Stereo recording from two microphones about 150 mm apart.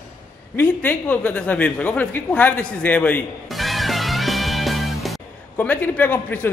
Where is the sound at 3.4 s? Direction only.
Centre (ahead or behind).